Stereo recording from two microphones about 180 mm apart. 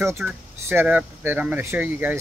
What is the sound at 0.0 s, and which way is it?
Speech, 15° right (ahead or behind).